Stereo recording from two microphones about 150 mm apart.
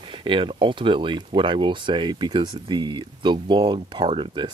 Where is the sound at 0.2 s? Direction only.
35° right (ahead or behind).